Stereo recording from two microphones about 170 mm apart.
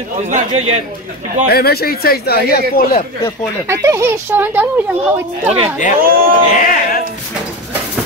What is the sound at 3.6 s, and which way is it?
Speech, 20° right (ahead or behind).